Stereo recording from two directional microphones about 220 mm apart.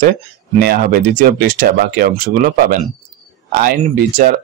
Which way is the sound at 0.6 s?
45° right (ahead or behind).